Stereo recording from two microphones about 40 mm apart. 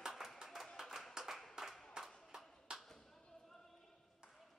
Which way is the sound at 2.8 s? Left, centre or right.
Centre.